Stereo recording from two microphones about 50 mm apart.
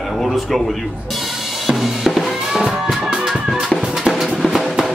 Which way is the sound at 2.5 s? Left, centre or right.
Centre.